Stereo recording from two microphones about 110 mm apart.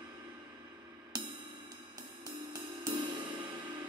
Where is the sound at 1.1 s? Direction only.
40° right (ahead or behind).